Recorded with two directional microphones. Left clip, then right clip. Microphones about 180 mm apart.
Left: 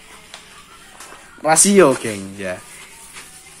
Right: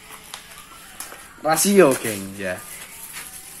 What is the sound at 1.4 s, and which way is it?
Speech, 40° left (ahead or behind).